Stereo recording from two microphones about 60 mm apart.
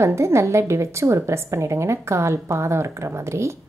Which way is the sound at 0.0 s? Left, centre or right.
Right.